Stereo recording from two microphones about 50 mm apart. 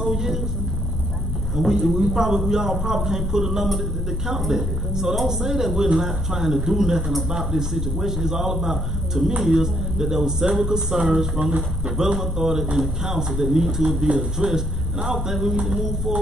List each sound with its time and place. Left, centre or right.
0.0 s vehicle: centre
1.7 s speech: centre
14.0 s speech: centre
14.5 s speech: centre